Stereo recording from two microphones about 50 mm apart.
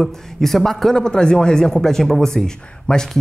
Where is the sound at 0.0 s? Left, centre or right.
Centre.